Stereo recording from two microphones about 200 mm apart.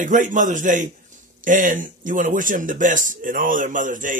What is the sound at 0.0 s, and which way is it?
A man's voice, 40° right (ahead or behind).